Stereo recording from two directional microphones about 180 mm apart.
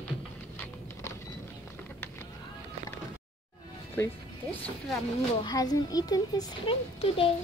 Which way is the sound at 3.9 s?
15° left (ahead or behind).